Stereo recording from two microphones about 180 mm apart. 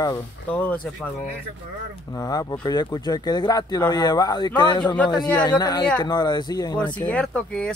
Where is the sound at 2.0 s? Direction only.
20° left (ahead or behind).